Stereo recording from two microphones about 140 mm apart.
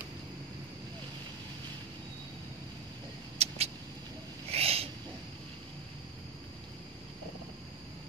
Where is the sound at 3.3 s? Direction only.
50° right (ahead or behind).